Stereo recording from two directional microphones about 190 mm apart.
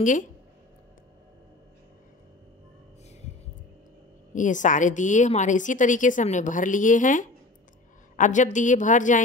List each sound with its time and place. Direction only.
0.0 s speech: 40° left (ahead or behind)
4.3 s a woman's voice: 40° left (ahead or behind)